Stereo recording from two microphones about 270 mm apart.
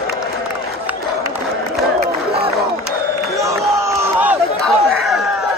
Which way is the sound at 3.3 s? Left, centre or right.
Centre.